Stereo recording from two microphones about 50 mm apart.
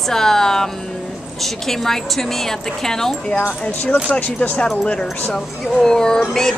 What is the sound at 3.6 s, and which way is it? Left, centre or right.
Speech, left.